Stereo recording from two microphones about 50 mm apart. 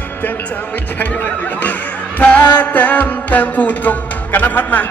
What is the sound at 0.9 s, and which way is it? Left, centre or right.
Speech, left.